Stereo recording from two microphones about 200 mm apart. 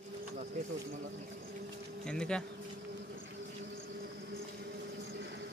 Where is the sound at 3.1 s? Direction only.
55° right (ahead or behind).